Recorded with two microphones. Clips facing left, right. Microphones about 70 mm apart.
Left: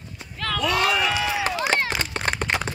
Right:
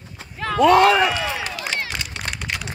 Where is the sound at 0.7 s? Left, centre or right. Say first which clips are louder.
Right 9 dB; right.